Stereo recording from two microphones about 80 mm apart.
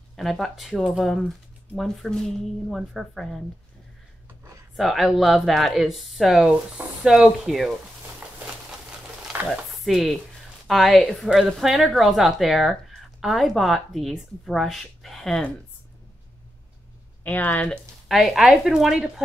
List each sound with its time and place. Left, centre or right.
0.1 s a woman's voice: centre
4.7 s a woman's voice: centre
9.5 s a woman's voice: centre
17.2 s speech: left
18.0 s a woman's voice: centre